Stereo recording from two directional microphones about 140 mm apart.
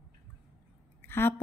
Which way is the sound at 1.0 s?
15° left (ahead or behind).